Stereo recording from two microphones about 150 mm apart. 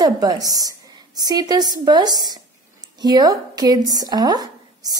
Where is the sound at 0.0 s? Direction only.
25° right (ahead or behind).